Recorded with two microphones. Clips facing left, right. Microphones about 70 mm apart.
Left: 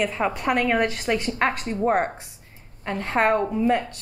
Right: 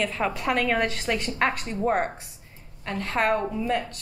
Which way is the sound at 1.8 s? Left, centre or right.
Left.